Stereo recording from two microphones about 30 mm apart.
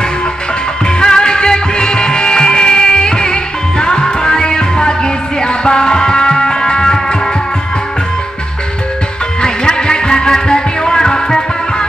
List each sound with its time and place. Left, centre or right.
0.8 s music: left
9.4 s music: left